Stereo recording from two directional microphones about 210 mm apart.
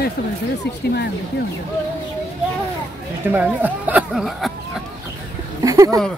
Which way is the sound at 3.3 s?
10° right (ahead or behind).